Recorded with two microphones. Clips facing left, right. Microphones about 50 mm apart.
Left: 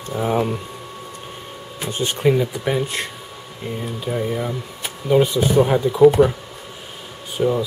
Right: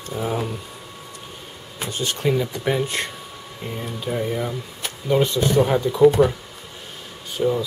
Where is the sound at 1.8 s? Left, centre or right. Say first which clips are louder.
Left 4 dB; left.